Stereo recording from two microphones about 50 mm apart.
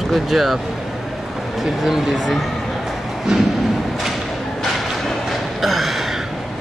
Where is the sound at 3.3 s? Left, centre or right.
Centre.